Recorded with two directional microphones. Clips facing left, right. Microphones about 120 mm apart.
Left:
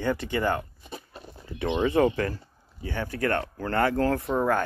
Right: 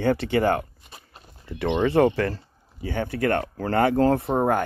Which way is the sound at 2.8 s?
20° right (ahead or behind).